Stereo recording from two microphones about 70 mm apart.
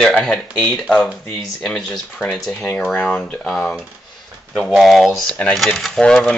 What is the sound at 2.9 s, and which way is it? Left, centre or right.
Speech, centre.